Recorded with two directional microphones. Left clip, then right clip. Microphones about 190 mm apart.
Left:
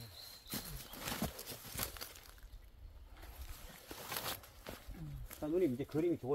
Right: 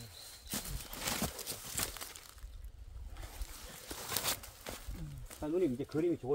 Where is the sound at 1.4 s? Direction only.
30° right (ahead or behind).